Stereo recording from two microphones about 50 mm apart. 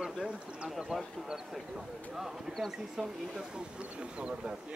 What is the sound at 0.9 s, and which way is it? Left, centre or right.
Speech, centre.